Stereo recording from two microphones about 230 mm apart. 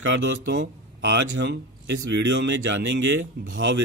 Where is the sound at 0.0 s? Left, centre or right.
Right.